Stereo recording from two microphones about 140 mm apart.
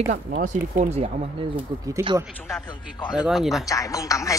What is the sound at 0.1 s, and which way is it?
Speech, 90° right.